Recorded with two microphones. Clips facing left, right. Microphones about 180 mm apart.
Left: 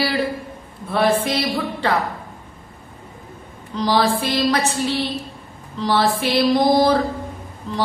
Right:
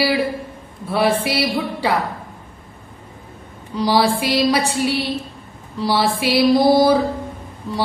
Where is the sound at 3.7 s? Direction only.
10° right (ahead or behind).